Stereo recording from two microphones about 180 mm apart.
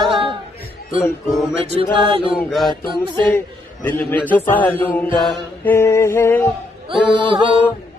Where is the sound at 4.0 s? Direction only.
10° left (ahead or behind).